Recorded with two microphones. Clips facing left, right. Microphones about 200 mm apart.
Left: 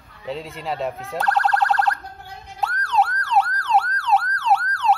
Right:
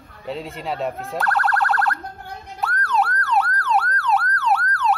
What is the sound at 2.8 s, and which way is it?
Emergency vehicle, 25° left (ahead or behind).